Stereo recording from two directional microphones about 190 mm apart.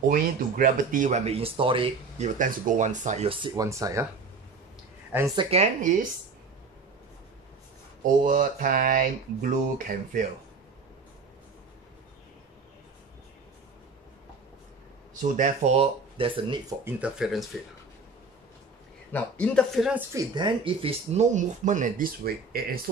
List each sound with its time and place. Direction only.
0.1 s speech: 45° right (ahead or behind); by 4.1 s 15° right (ahead or behind)
5.1 s speech: 20° right (ahead or behind); by 5.9 s 40° right (ahead or behind)
8.2 s speech: 45° right (ahead or behind)
15.3 s speech: 40° right (ahead or behind)
16.8 s speech: 5° right (ahead or behind)
19.1 s speech: 5° left (ahead or behind)
20.1 s speech: 20° right (ahead or behind); by 22.8 s 50° right (ahead or behind)